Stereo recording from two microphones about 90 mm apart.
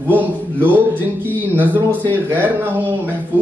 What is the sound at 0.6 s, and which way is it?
Speech, 20° right (ahead or behind).